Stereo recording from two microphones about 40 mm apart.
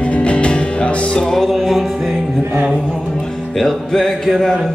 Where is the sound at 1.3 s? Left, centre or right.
Centre.